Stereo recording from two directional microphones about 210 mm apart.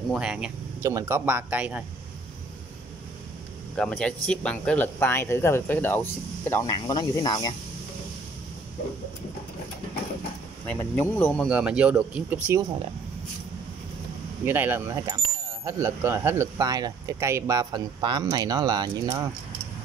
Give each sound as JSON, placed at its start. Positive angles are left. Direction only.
{"t": 0.1, "sound": "speech", "side_deg": -5}
{"t": 3.7, "sound": "speech", "side_deg": 5}
{"t": 10.7, "sound": "speech", "side_deg": 10}
{"t": 11.4, "sound": "speech", "side_deg": -5}
{"t": 14.4, "sound": "speech", "side_deg": -10}